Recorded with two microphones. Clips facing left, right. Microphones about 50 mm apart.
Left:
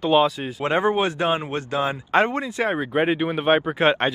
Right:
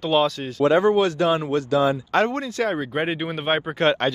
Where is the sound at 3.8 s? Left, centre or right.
Centre.